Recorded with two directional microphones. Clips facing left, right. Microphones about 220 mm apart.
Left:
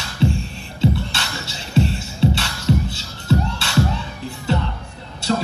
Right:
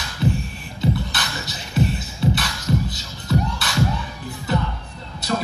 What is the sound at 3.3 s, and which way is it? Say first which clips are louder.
Children shouting: left 2 dB; 30° left (ahead or behind).